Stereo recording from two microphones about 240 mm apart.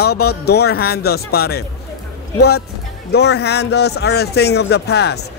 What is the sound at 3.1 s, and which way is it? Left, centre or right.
Speech, left.